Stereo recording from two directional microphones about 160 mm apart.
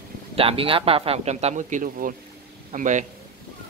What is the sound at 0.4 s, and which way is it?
A man's voice, 35° right (ahead or behind).